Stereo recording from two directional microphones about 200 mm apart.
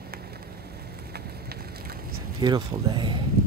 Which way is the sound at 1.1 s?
50° right (ahead or behind).